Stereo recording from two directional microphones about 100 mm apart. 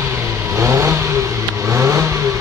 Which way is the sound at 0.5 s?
30° right (ahead or behind).